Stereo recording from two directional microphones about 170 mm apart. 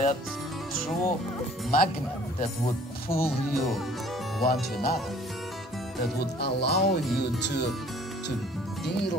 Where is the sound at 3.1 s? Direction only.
15° left (ahead or behind).